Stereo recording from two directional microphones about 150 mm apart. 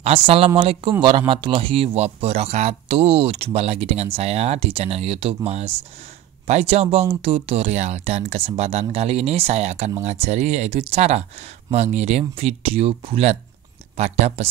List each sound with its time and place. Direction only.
0.0 s a man's voice: 40° right (ahead or behind)